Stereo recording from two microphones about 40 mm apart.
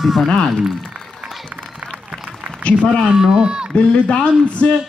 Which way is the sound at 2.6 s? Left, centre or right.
Left.